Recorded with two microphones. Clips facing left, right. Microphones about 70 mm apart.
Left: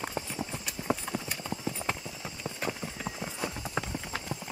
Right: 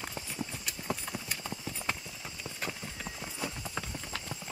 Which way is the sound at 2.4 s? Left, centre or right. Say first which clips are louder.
Left 5 dB; centre.